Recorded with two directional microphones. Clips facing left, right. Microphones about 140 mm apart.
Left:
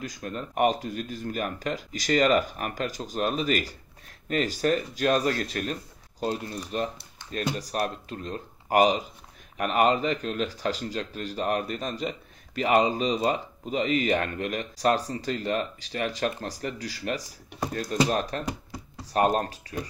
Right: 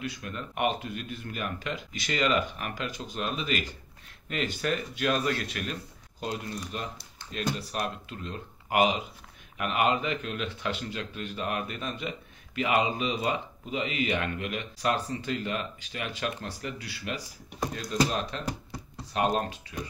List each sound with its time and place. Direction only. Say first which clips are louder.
0.0 s speech: left 2 dB; 40° left (ahead or behind)